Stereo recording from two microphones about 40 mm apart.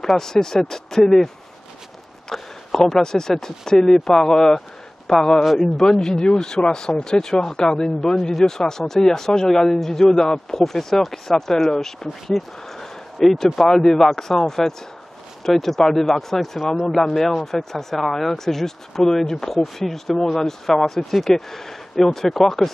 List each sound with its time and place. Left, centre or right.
0.2 s speech: centre
16.6 s speech: centre
16.9 s speech: centre